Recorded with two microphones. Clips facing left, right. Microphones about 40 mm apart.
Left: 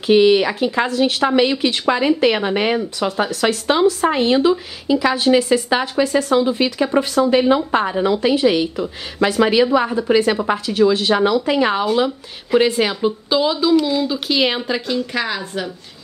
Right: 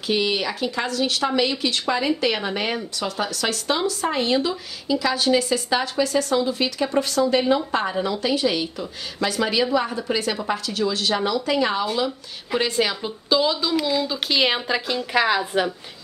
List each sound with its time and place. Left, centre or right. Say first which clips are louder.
0.0 s a woman's voice: left 10 dB; left
12.5 s speech: left 6 dB; centre